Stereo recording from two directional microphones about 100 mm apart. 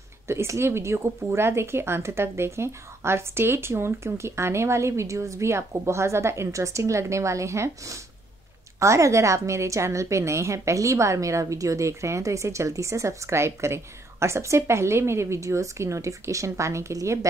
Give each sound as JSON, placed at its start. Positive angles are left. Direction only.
{"t": 0.3, "sound": "a woman's voice", "side_deg": -25}